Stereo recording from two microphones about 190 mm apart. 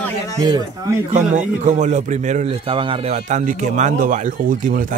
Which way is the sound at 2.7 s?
30° right (ahead or behind).